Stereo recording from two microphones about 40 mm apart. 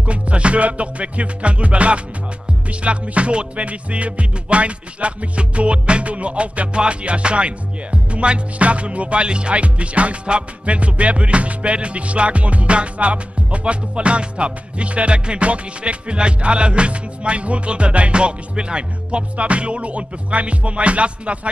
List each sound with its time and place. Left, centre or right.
0.0 s music: right